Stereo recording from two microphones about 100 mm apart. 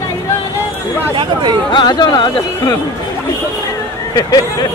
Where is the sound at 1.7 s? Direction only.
45° left (ahead or behind).